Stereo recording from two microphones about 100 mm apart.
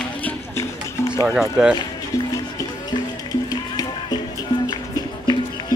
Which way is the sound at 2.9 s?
40° left (ahead or behind).